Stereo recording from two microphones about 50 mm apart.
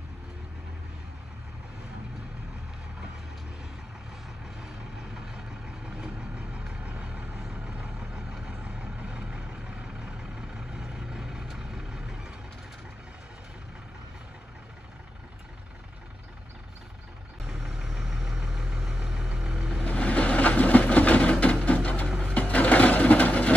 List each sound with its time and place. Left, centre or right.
5.1 s vehicle: centre
8.1 s vehicle: centre
8.5 s vehicle: right
17.5 s vehicle: centre
19.8 s vehicle: left
21.6 s printer: left
22.3 s sewing machine: left